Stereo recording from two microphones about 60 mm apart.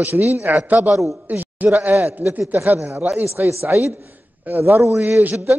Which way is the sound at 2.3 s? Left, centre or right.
Right.